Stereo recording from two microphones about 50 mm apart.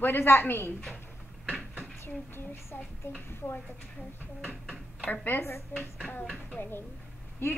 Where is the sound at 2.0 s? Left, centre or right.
Left.